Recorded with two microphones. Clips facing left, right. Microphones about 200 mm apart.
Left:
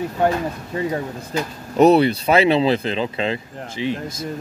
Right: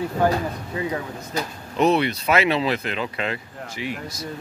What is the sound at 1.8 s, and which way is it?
Speech, 35° left (ahead or behind).